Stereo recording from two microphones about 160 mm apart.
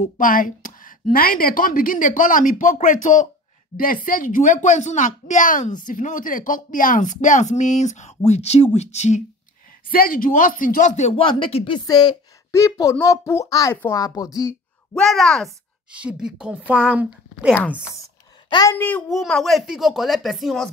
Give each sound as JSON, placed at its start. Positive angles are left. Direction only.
{"t": 0.0, "sound": "a woman's voice", "side_deg": 60}
{"t": 9.8, "sound": "a woman's voice", "side_deg": 70}
{"t": 11.1, "sound": "a woman's voice", "side_deg": 30}
{"t": 15.0, "sound": "speech", "side_deg": 0}
{"t": 18.5, "sound": "speech", "side_deg": 25}
{"t": 18.8, "sound": "a child's voice", "side_deg": 10}